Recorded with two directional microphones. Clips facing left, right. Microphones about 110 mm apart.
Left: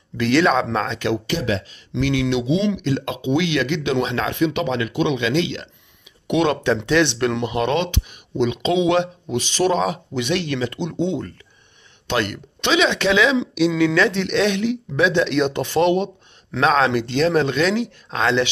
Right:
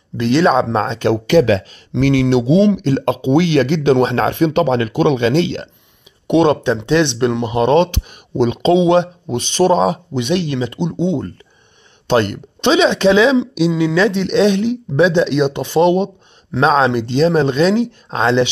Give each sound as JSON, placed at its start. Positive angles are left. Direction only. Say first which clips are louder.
{"t": 0.2, "sound": "speech", "louder": "right 4 dB", "side_deg": -25}
{"t": 1.2, "sound": "speech", "louder": "right 11 dB", "side_deg": -75}
{"t": 1.9, "sound": "speech", "louder": "right 7 dB", "side_deg": -45}